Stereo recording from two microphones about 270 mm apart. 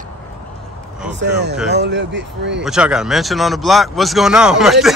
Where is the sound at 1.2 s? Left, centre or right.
Right.